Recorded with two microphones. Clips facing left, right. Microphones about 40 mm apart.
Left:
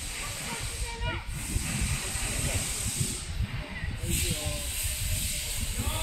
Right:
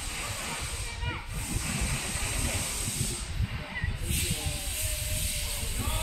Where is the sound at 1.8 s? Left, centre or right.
Right.